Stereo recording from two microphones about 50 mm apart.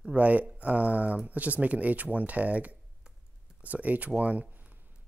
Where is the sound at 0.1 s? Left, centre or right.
Right.